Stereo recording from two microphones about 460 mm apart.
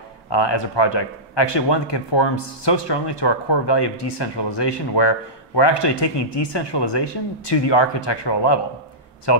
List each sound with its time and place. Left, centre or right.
0.3 s speech: left